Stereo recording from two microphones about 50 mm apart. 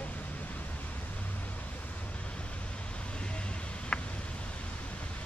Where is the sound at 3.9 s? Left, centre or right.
Centre.